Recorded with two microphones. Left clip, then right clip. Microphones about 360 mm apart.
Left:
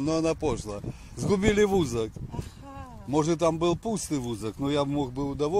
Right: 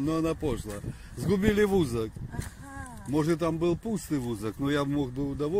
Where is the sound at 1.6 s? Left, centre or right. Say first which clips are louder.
Left 2 dB; centre.